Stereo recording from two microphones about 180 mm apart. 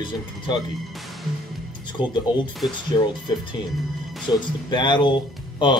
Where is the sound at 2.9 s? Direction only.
25° left (ahead or behind).